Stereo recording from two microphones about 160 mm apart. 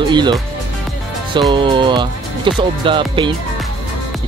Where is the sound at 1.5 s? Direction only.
30° right (ahead or behind).